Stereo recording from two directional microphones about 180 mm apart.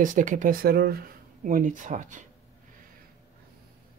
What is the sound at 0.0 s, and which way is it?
Speech, 45° right (ahead or behind).